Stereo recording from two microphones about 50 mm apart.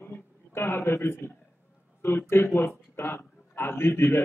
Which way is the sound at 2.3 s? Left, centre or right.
Left.